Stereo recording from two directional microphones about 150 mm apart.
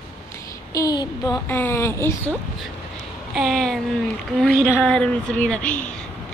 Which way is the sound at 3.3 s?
Centre (ahead or behind).